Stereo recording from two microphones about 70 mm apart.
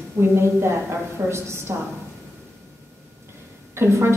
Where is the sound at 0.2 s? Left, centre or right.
Right.